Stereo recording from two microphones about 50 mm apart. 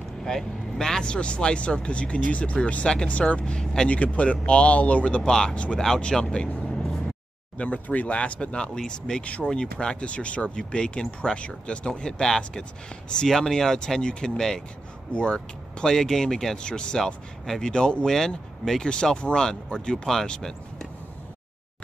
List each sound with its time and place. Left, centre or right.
0.2 s speech: centre
7.5 s speech: left
9.2 s speech: left
9.5 s speech: centre